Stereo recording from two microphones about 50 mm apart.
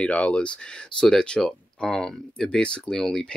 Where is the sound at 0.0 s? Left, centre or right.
Left.